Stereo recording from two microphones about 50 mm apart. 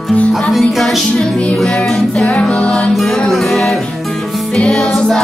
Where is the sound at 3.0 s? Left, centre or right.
Centre.